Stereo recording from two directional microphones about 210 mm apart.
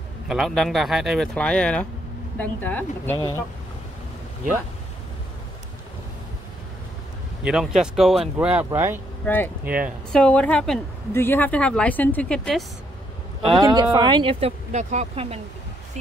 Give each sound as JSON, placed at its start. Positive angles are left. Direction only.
{"t": 0.3, "sound": "a woman's voice", "side_deg": 0}
{"t": 7.4, "sound": "a woman's voice", "side_deg": -5}
{"t": 9.2, "sound": "speech", "side_deg": 10}
{"t": 9.7, "sound": "speech", "side_deg": -5}
{"t": 10.2, "sound": "a woman's voice", "side_deg": 5}
{"t": 13.6, "sound": "speech", "side_deg": -20}